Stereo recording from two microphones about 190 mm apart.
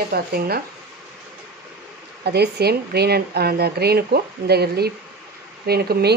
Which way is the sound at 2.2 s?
60° right (ahead or behind).